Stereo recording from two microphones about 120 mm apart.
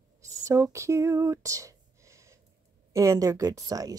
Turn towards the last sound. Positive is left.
turn(degrees=-30)  # may be behind; listen again after turning